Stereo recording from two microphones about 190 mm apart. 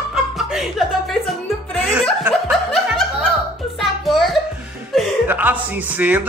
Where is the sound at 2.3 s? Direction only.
Centre (ahead or behind).